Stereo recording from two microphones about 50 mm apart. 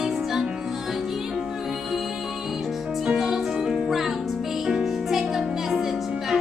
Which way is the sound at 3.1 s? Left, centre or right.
Centre.